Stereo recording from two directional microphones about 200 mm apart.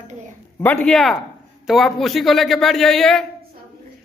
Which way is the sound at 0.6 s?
5° left (ahead or behind).